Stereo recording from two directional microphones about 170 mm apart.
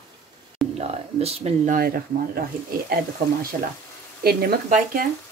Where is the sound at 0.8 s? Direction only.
40° right (ahead or behind); by 2.4 s 60° right (ahead or behind).